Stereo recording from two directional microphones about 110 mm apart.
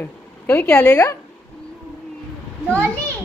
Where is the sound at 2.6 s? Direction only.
10° left (ahead or behind).